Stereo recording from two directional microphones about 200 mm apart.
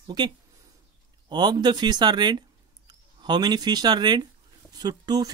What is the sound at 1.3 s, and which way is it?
Speech, 20° right (ahead or behind).